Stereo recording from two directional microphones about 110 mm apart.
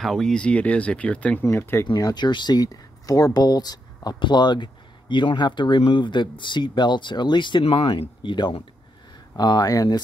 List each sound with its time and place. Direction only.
0.0 s speech: 5° left (ahead or behind)
1.4 s speech: 25° left (ahead or behind)
2.0 s speech: 40° left (ahead or behind)